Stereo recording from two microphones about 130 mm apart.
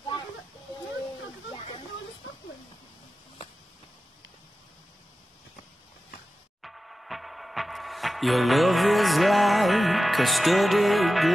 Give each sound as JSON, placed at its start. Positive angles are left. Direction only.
{"t": 6.6, "sound": "music", "side_deg": 0}